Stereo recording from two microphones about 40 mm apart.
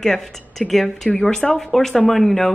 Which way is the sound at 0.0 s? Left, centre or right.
Centre.